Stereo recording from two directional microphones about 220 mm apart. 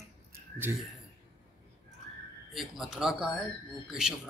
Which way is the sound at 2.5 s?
Centre (ahead or behind).